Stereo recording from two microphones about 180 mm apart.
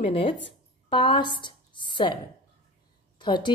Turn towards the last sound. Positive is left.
turn(degrees=25)  # may be behind; listen again after turning